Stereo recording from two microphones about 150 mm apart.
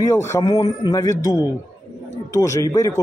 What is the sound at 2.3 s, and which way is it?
Speech, 20° left (ahead or behind).